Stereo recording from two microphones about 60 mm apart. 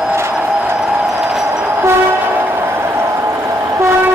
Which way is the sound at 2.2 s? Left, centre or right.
Right.